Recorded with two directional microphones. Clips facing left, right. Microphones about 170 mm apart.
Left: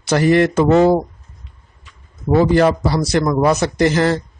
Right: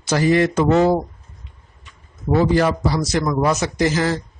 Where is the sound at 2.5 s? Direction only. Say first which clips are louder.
Left 3 dB; 60° left (ahead or behind).